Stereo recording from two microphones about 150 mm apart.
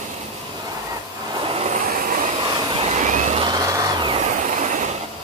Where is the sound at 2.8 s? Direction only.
55° right (ahead or behind).